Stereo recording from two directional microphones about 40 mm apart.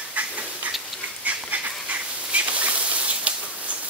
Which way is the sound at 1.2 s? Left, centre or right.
Right.